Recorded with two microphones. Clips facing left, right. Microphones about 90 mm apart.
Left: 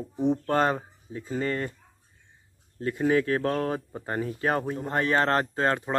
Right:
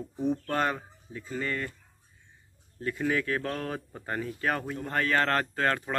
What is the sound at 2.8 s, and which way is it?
Speech, 30° left (ahead or behind).